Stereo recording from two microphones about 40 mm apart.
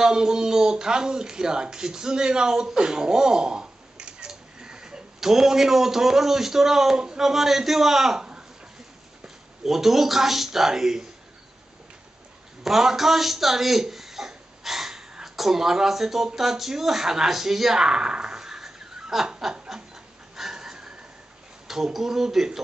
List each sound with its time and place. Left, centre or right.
0.0 s speech: centre
9.7 s speech: centre
12.6 s a man's voice: centre
20.3 s a sound: centre
21.6 s speech: centre